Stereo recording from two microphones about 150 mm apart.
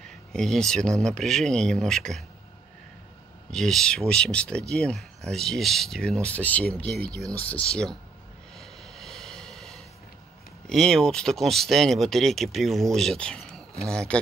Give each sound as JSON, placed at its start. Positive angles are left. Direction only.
{"t": 0.0, "sound": "speech", "side_deg": 5}
{"t": 3.4, "sound": "speech", "side_deg": 5}
{"t": 8.5, "sound": "vehicle", "side_deg": 0}
{"t": 10.7, "sound": "speech", "side_deg": 5}